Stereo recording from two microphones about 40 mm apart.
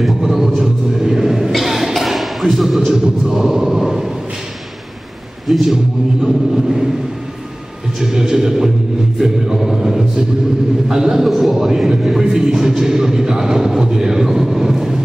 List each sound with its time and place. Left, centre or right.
0.2 s a sound: centre
0.6 s speech: centre
1.5 s music: centre
3.3 s a sound: centre
5.5 s speech: centre
8.0 s speech: centre